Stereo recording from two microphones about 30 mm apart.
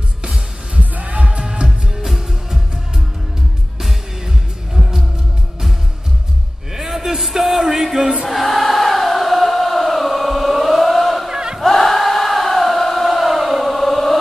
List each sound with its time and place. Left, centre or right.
0.7 s music: right
1.4 s music: right
6.7 s a sound: centre
7.2 s music: centre
8.2 s chant: centre
11.2 s crowd: right
11.6 s chant: centre